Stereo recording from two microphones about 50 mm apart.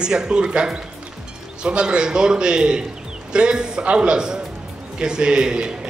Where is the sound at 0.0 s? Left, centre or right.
Centre.